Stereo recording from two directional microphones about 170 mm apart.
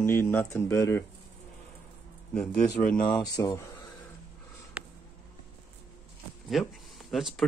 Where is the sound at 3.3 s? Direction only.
20° left (ahead or behind).